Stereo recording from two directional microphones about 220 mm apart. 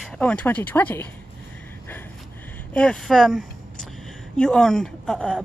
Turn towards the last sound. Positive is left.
turn(degrees=0)  # may be behind; listen again after turning